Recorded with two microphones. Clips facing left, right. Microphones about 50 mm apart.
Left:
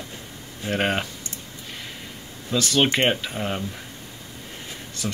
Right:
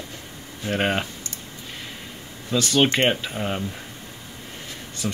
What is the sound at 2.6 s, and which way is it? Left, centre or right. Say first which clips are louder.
Speech: right 1 dB; centre.